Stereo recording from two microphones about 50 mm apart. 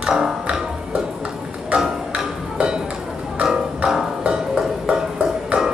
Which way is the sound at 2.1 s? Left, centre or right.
Centre.